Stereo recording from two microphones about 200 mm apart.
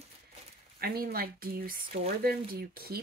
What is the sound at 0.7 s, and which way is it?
Speech, 50° right (ahead or behind).